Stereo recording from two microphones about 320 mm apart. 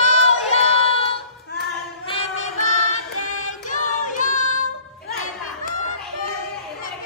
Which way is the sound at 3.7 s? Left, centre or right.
Left.